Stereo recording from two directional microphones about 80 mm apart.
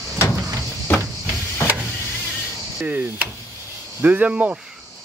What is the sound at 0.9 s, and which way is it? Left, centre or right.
Vehicle, left.